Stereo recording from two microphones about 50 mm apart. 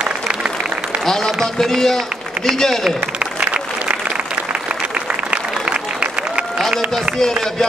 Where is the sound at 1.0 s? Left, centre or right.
Centre.